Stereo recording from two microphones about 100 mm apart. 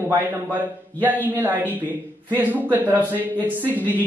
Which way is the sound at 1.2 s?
20° right (ahead or behind).